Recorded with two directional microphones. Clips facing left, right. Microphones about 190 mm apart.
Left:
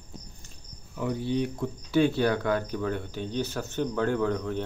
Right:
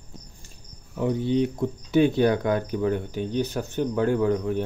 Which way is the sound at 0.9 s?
20° right (ahead or behind).